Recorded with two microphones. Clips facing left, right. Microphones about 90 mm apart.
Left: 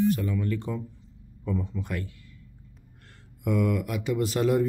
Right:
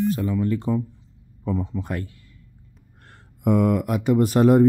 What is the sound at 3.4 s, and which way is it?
Speech, 45° right (ahead or behind).